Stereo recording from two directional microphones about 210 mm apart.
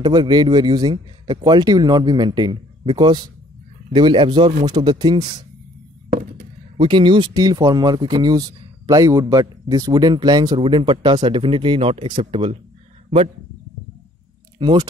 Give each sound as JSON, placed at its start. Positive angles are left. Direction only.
{"t": 0.0, "sound": "speech", "side_deg": -20}
{"t": 6.8, "sound": "speech", "side_deg": -25}
{"t": 14.6, "sound": "speech", "side_deg": -20}